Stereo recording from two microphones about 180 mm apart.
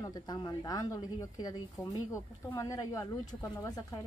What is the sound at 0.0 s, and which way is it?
A woman's voice, 20° left (ahead or behind).